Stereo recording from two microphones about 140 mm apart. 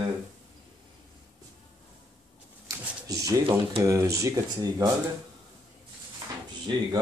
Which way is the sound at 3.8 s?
20° right (ahead or behind).